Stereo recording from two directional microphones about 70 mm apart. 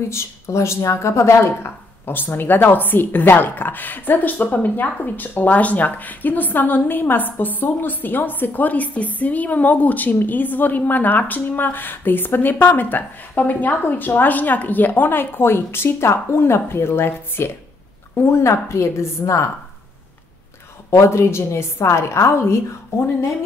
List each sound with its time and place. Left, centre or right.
0.1 s a woman's voice: left
20.9 s a woman's voice: left